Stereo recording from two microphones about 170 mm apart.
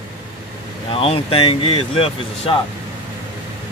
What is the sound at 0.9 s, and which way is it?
Speech, 35° left (ahead or behind).